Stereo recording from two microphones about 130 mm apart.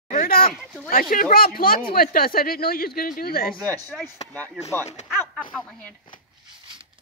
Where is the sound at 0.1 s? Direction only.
90° left.